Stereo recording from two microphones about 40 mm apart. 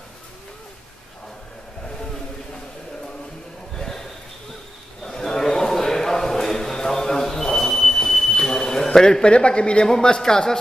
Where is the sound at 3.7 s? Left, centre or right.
Centre.